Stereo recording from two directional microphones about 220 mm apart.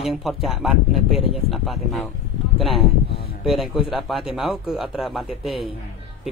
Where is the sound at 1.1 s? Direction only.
25° left (ahead or behind).